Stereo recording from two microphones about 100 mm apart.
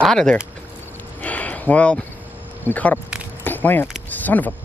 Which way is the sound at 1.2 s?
15° left (ahead or behind).